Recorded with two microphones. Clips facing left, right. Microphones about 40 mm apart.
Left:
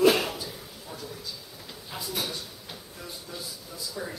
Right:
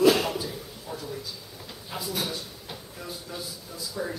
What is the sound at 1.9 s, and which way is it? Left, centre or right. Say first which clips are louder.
Speech: right 2 dB; centre.